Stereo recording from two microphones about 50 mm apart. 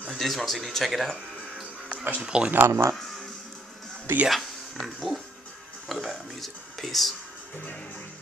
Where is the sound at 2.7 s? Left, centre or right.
Right.